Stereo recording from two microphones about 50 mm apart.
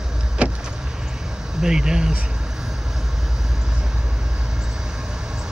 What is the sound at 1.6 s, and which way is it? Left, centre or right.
Speech, centre.